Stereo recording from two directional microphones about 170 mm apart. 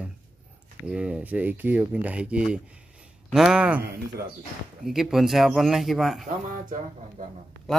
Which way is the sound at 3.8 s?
65° right (ahead or behind).